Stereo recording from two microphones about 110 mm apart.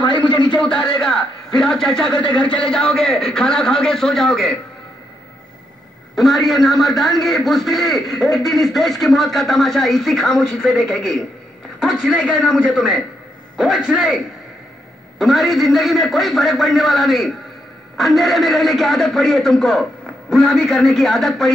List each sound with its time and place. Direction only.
0.0 s a sound: 45° left (ahead or behind)
0.5 s a man's voice: 10° left (ahead or behind)
6.1 s a man's voice: centre (ahead or behind)